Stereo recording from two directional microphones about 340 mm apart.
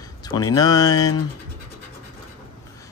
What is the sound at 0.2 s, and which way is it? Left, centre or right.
Speech, centre.